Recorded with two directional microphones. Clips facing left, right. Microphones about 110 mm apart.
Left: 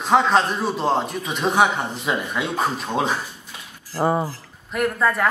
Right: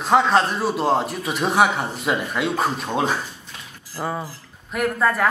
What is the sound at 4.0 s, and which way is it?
Speech, 30° left (ahead or behind).